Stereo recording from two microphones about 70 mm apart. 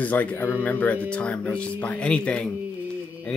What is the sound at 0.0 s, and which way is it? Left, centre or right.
A man's voice, left.